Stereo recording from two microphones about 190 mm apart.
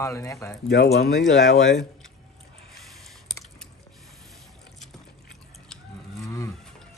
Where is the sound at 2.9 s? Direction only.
Centre (ahead or behind).